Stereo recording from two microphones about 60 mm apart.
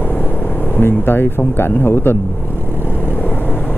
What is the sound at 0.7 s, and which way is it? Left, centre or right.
Speech, left.